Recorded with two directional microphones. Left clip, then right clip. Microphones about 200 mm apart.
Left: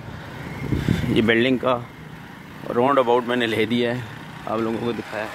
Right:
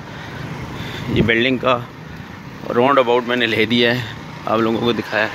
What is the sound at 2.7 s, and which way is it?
Speech, 10° left (ahead or behind).